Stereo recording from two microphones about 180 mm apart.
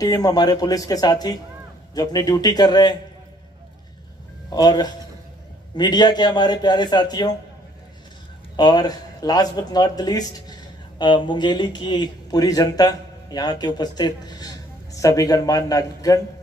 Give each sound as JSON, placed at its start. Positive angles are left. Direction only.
{"t": 0.0, "sound": "a man's voice", "side_deg": 20}
{"t": 4.5, "sound": "a man's voice", "side_deg": 20}
{"t": 8.5, "sound": "speech", "side_deg": 25}